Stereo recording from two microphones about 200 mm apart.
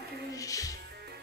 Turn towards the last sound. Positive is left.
turn(degrees=15)  # may be behind; listen again after turning